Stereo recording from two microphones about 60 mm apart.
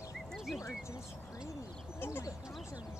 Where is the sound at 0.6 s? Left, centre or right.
Left.